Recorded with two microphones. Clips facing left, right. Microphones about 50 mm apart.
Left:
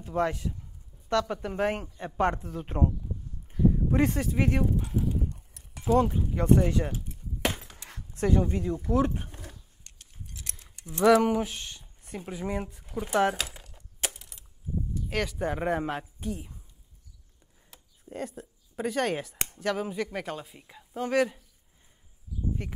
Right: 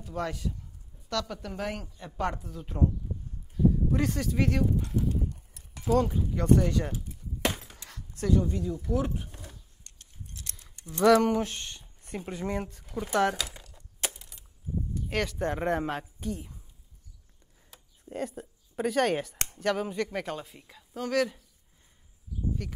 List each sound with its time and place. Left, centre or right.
0.0 s a man's voice: left
4.7 s clip-clop: centre
7.4 s a sound: centre
8.1 s speech: left
10.4 s speech: centre
13.6 s a sound: left
14.0 s a sound: centre
15.0 s speech: centre
17.6 s a sound: centre
19.3 s speech: centre
20.6 s speech: centre
22.6 s speech: left